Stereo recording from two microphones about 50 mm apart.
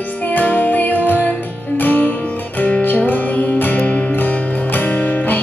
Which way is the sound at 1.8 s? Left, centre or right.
Left.